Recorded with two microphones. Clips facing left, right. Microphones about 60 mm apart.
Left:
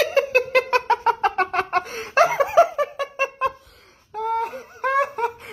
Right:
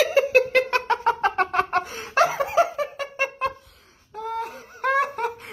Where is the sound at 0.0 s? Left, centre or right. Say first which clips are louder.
Right 1 dB; centre.